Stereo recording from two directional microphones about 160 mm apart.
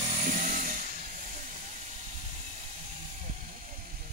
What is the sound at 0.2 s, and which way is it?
Chainsaw, 50° right (ahead or behind).